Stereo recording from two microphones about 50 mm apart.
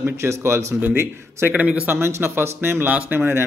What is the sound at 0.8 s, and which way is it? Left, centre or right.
Speech, right.